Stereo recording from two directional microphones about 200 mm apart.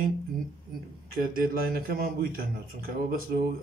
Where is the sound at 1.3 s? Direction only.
45° right (ahead or behind).